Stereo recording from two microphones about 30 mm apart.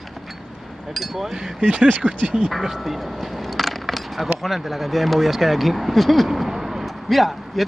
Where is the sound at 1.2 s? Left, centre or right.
Centre.